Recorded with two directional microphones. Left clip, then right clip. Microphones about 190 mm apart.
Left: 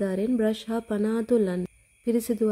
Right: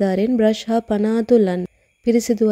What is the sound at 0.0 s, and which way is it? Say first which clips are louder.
A woman's voice: right 8 dB; 40° right (ahead or behind).